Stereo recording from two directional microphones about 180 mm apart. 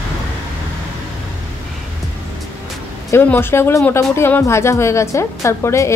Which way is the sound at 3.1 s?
10° left (ahead or behind).